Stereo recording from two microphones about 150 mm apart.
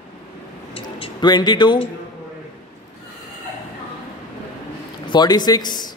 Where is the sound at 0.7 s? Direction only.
35° left (ahead or behind).